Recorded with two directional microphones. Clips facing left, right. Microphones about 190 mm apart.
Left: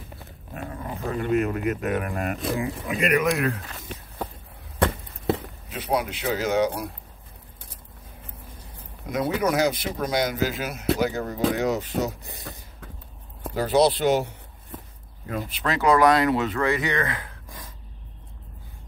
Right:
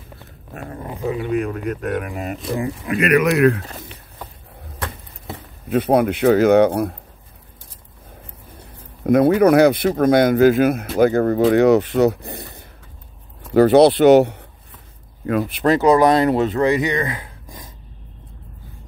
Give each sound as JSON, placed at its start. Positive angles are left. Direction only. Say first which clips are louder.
{"t": 1.0, "sound": "speech", "louder": "right 2 dB", "side_deg": -5}
{"t": 2.9, "sound": "speech", "louder": "right 6 dB", "side_deg": -75}
{"t": 5.7, "sound": "speech", "louder": "right 10 dB", "side_deg": -55}
{"t": 9.0, "sound": "speech", "louder": "right 11 dB", "side_deg": -55}
{"t": 13.5, "sound": "speech", "louder": "right 9 dB", "side_deg": -65}
{"t": 15.8, "sound": "speech", "louder": "right 3 dB", "side_deg": -25}